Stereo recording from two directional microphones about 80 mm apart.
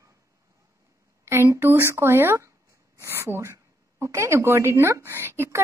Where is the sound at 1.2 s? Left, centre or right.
Right.